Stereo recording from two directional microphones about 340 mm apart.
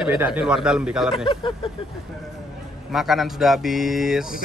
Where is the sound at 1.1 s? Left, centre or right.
Centre.